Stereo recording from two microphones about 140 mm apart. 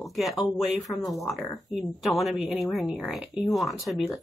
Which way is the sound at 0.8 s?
25° left (ahead or behind).